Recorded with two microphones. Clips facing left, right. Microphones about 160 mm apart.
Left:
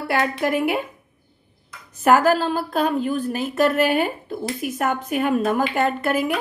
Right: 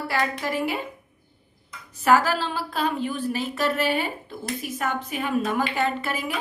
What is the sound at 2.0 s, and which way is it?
A woman's voice, 50° left (ahead or behind).